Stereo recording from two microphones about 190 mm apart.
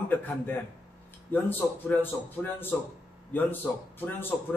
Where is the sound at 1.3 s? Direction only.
10° left (ahead or behind).